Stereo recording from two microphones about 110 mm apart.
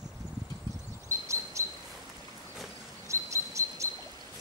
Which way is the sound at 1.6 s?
25° right (ahead or behind).